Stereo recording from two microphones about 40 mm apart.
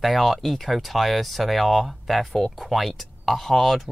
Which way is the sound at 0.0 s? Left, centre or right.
Centre.